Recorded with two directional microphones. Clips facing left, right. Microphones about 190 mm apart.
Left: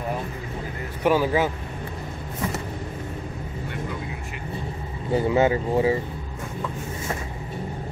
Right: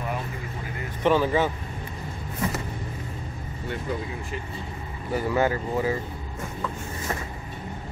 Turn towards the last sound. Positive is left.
turn(degrees=25)  # may be behind; listen again after turning